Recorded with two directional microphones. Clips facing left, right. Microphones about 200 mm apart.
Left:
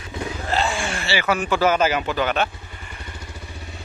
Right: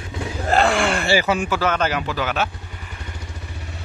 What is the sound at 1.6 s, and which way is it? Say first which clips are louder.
Speech: left 2 dB; 5° left (ahead or behind).